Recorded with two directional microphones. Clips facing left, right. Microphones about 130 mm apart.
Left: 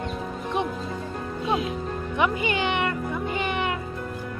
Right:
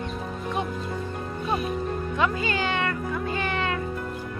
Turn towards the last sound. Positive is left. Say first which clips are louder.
# left 1 dB
turn(degrees=20)  # may be behind; listen again after turning